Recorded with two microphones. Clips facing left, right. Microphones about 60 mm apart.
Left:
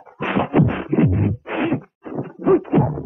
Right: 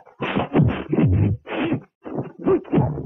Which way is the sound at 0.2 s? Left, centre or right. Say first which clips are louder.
Left 2 dB; centre.